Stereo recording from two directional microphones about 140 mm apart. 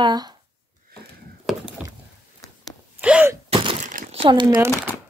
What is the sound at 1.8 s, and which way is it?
Rowboat, 5° right (ahead or behind).